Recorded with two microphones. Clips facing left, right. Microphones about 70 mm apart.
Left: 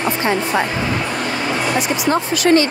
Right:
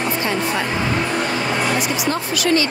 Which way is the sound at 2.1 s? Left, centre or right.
Left.